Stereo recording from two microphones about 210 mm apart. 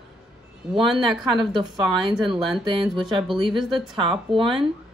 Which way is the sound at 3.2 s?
Centre (ahead or behind).